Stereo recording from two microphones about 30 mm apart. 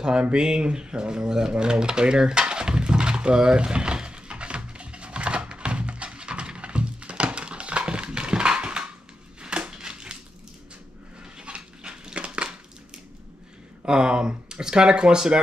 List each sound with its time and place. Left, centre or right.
0.0 s speech: right
2.4 s a sound: right
11.4 s dog: right
12.3 s crushing: right
13.8 s speech: right